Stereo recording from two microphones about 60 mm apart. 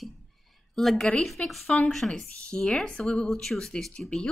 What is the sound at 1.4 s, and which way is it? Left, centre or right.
Speech, left.